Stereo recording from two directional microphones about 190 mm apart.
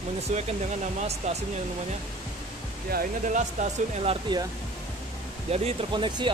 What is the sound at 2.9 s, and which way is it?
Speech, 45° right (ahead or behind).